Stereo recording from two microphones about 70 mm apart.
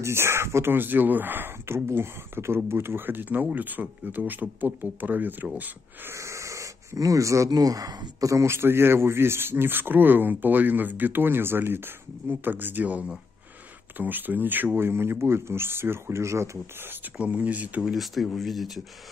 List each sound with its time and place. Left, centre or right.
0.0 s speech: right
6.1 s speech: right
8.3 s speech: right
17.2 s speech: centre
17.8 s speech: centre